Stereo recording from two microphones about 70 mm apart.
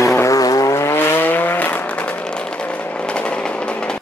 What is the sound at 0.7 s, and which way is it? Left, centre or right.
Vehicle, left.